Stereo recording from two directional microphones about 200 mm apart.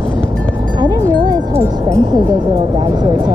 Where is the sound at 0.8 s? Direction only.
20° right (ahead or behind).